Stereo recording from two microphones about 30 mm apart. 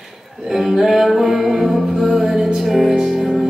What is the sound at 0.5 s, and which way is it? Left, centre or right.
Music, centre.